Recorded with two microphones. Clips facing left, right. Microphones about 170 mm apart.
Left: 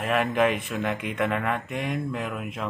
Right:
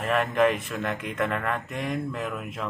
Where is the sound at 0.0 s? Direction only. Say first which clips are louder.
Even; centre (ahead or behind).